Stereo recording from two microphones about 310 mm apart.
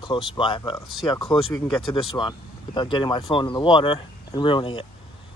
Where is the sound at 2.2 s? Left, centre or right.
Centre.